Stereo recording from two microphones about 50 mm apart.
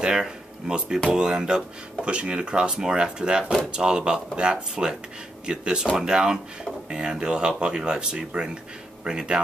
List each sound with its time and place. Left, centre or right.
0.0 s speech: centre